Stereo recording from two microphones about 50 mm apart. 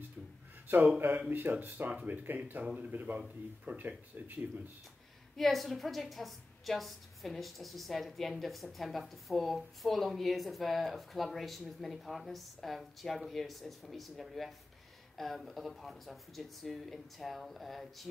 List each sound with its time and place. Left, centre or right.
0.7 s speech: right
5.4 s a woman's voice: centre